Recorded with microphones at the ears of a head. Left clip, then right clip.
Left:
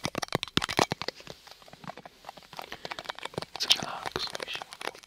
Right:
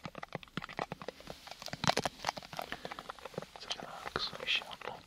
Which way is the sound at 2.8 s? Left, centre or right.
Left.